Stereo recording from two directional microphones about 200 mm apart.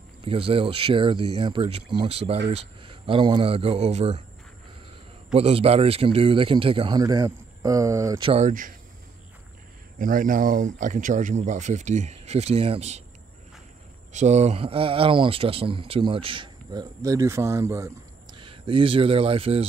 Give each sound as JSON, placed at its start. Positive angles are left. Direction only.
{"t": 0.2, "sound": "speech", "side_deg": -30}
{"t": 5.3, "sound": "speech", "side_deg": -30}
{"t": 8.3, "sound": "speech", "side_deg": -35}
{"t": 9.9, "sound": "speech", "side_deg": -45}
{"t": 14.1, "sound": "speech", "side_deg": -35}
{"t": 18.4, "sound": "speech", "side_deg": -25}